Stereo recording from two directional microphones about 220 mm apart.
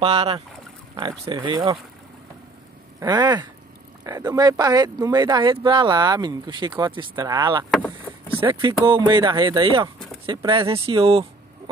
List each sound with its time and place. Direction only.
0.0 s speech: 25° right (ahead or behind)
3.0 s speech: 20° right (ahead or behind)
7.7 s vehicle: 5° left (ahead or behind)
8.4 s speech: 20° right (ahead or behind)